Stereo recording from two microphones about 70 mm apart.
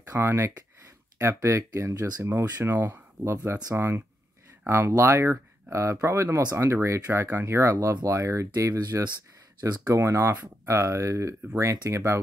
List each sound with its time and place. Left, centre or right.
0.2 s speech: right
1.2 s speech: right
2.6 s speech: right